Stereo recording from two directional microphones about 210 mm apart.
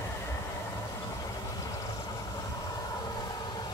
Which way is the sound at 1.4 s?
15° left (ahead or behind).